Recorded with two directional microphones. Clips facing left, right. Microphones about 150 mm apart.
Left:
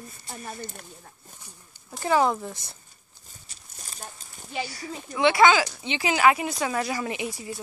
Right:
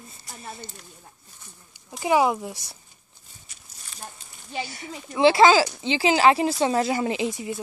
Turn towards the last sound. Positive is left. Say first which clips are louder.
# right 5 dB
turn(degrees=-20)  # may be behind; listen again after turning